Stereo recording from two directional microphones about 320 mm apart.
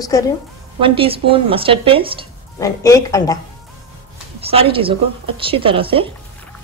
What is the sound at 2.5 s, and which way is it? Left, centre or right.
Speech, centre.